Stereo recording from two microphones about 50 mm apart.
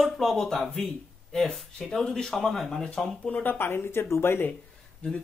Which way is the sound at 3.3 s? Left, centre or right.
Left.